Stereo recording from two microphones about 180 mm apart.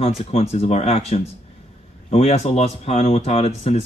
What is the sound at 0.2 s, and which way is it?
Speech, 35° left (ahead or behind).